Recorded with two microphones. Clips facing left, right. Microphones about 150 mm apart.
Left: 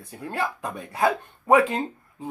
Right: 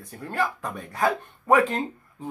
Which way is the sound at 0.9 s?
20° left (ahead or behind).